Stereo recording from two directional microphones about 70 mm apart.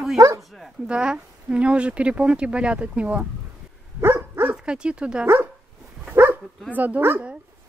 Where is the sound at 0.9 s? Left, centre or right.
Centre.